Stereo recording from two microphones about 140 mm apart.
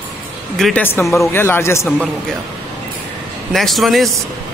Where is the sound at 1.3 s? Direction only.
15° left (ahead or behind).